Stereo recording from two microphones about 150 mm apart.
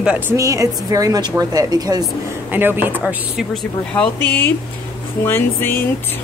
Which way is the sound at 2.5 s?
15° right (ahead or behind).